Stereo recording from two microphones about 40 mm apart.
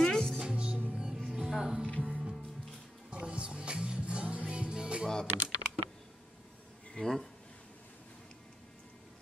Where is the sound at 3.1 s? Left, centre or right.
Right.